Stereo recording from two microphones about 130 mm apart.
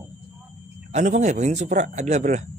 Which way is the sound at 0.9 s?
65° right (ahead or behind).